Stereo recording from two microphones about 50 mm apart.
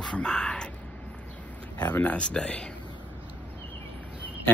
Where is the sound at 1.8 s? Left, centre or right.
Left.